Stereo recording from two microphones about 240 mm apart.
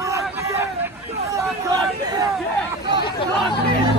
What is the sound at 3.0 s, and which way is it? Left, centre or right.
Hubbub, centre.